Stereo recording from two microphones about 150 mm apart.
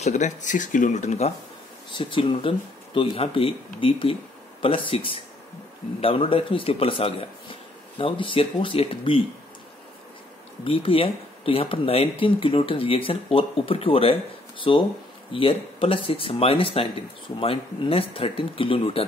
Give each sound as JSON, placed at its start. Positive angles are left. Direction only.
{"t": 0.0, "sound": "speech", "side_deg": 55}
{"t": 1.9, "sound": "speech", "side_deg": 35}
{"t": 10.6, "sound": "speech", "side_deg": 40}